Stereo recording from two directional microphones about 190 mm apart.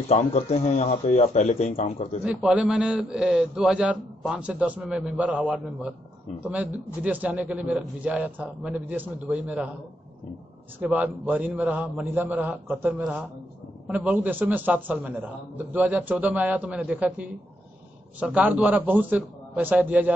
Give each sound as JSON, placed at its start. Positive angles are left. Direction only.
{"t": 0.1, "sound": "a man's voice", "side_deg": 35}
{"t": 2.2, "sound": "a man's voice", "side_deg": -5}
{"t": 10.8, "sound": "a man's voice", "side_deg": -10}